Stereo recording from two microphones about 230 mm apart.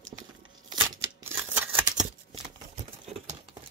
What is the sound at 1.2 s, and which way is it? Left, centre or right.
Scissors, centre.